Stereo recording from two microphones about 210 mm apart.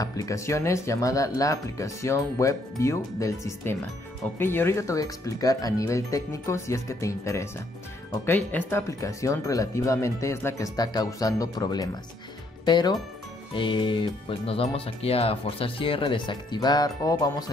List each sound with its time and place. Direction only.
0.0 s speech: 15° left (ahead or behind)